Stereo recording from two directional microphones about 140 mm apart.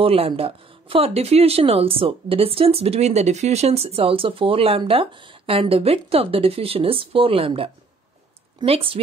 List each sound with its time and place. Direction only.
0.0 s speech: 45° right (ahead or behind)